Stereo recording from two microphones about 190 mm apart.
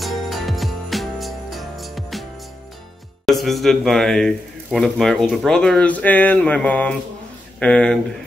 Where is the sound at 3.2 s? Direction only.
Centre (ahead or behind).